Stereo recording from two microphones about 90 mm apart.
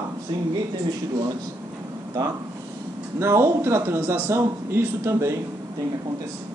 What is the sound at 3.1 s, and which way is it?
A man's voice, 30° right (ahead or behind).